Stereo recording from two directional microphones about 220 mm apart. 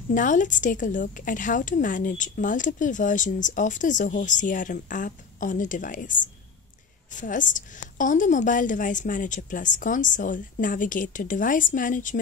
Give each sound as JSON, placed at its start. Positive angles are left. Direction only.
{"t": 0.1, "sound": "a woman's voice", "side_deg": 35}